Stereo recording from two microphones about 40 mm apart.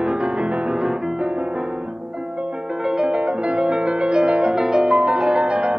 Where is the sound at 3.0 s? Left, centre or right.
Right.